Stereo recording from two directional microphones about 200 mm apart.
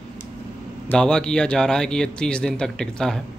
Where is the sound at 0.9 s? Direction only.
5° left (ahead or behind).